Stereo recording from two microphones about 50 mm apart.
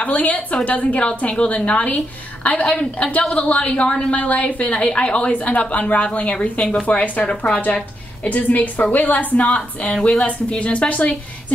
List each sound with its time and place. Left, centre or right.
0.0 s a woman's voice: left